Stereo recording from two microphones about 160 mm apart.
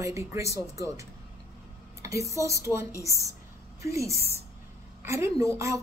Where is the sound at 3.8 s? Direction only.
20° right (ahead or behind).